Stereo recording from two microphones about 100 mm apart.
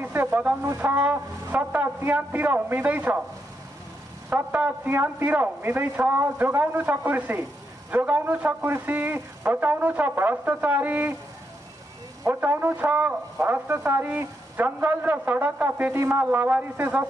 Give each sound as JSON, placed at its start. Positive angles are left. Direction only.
{"t": 0.0, "sound": "a man's voice", "side_deg": -20}
{"t": 4.3, "sound": "a man's voice", "side_deg": -15}
{"t": 12.3, "sound": "a man's voice", "side_deg": -20}